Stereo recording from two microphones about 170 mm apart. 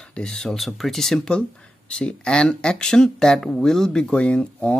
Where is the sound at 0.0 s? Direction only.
5° left (ahead or behind).